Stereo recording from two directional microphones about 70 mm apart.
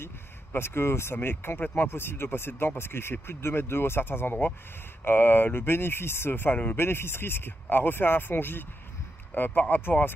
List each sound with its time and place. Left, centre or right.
0.0 s speech: left